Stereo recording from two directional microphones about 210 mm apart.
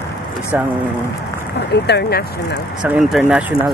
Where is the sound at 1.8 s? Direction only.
55° left (ahead or behind).